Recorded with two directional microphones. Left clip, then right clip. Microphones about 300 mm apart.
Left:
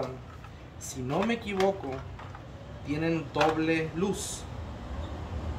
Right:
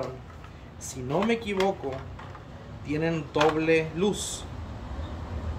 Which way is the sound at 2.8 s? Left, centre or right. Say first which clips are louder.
Right 2 dB; centre.